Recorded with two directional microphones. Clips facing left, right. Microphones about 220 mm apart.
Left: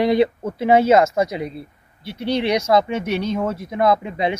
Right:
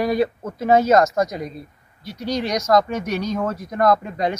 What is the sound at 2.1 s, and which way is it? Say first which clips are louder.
Speech: left 4 dB; 30° left (ahead or behind).